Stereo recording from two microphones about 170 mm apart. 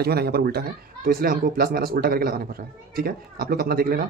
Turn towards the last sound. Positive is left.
turn(degrees=-60)  # may be behind; listen again after turning